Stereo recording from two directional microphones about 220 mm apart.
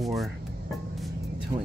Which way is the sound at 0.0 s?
Centre (ahead or behind).